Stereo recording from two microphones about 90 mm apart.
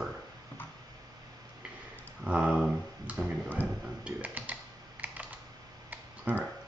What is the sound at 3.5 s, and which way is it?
Typing, 20° right (ahead or behind).